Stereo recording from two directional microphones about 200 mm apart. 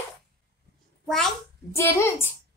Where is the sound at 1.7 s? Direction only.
10° left (ahead or behind).